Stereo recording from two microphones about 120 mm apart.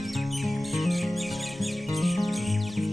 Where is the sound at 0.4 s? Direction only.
Centre (ahead or behind).